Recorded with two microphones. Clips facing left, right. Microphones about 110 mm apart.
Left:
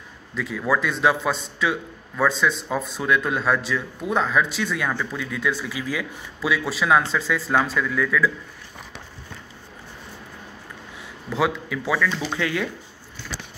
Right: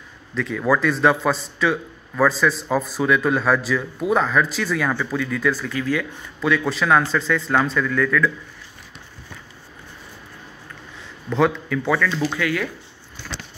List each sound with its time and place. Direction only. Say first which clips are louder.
0.3 s a man's voice: right 3 dB; 5° left (ahead or behind)
11.2 s a man's voice: right 4 dB; 5° left (ahead or behind)
12.4 s speech: right 2 dB; 25° left (ahead or behind)